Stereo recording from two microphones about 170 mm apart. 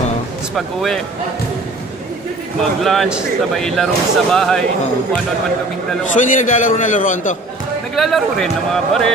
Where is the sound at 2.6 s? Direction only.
Centre (ahead or behind).